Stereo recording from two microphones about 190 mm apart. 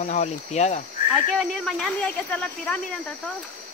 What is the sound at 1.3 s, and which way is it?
Speech, centre (ahead or behind).